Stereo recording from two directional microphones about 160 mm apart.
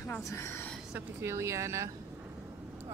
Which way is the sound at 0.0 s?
15° left (ahead or behind).